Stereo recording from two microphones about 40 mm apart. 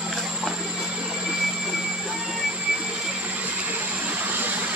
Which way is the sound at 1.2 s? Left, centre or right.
Centre.